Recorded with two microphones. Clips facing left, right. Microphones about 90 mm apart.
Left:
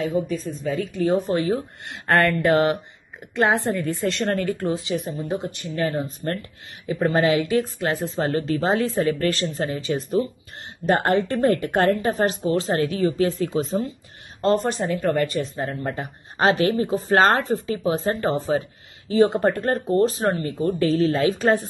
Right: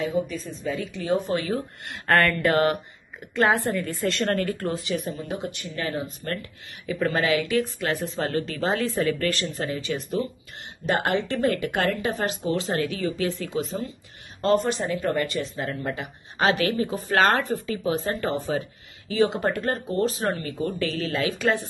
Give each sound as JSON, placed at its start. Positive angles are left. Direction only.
{"t": 0.5, "sound": "speech", "side_deg": 45}
{"t": 1.0, "sound": "speech", "side_deg": 35}
{"t": 2.0, "sound": "a woman's voice", "side_deg": 15}
{"t": 10.9, "sound": "speech", "side_deg": 40}